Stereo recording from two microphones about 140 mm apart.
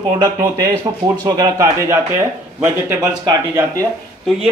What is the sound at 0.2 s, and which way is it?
Speech, 25° right (ahead or behind).